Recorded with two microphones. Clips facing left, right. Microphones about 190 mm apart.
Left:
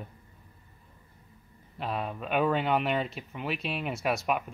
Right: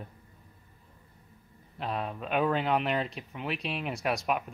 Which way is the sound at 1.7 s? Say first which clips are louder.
Left 1 dB; centre (ahead or behind).